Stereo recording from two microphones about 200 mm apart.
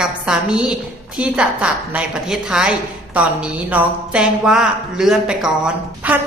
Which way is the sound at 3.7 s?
5° right (ahead or behind).